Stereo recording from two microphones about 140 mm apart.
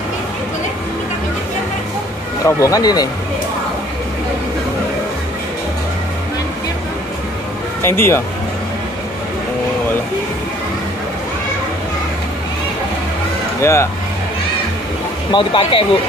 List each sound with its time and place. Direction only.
2.4 s speech: 25° left (ahead or behind)
7.8 s speech: 20° left (ahead or behind)
13.6 s speech: 20° left (ahead or behind)
15.3 s speech: 35° left (ahead or behind)